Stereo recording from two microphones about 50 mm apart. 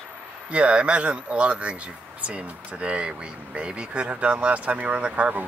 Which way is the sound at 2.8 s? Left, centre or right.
Right.